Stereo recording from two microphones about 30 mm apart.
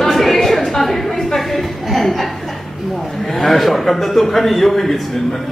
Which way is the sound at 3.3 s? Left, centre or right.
Centre.